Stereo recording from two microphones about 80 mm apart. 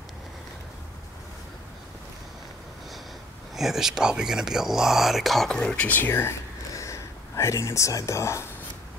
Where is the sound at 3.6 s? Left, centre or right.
Centre.